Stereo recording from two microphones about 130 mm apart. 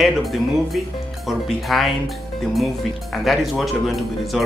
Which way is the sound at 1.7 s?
Centre (ahead or behind).